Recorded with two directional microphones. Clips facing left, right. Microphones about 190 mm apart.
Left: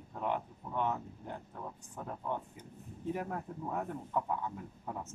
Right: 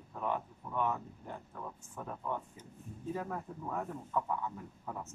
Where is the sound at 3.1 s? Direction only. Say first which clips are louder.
Left 1 dB; 20° left (ahead or behind).